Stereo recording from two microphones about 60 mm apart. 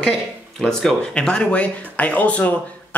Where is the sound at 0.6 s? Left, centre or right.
Centre.